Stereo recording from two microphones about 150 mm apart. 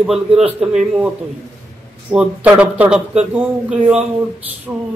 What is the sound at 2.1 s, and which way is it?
Speech, 10° right (ahead or behind).